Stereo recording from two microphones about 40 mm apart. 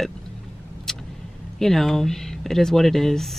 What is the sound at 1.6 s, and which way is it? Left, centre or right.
Speech, centre.